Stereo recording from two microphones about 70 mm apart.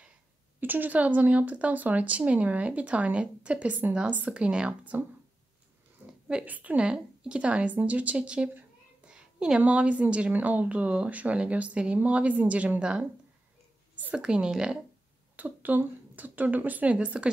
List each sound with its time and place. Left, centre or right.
0.6 s a woman's voice: right
6.4 s a woman's voice: right
9.0 s a sound: centre
9.6 s a woman's voice: centre
14.1 s speech: centre
15.3 s a woman's voice: right